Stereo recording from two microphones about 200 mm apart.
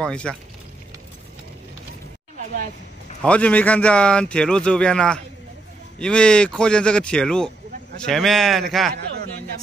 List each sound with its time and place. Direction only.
0.0 s speech: 5° left (ahead or behind)
3.2 s speech: 5° left (ahead or behind)
8.9 s a sound: 50° right (ahead or behind)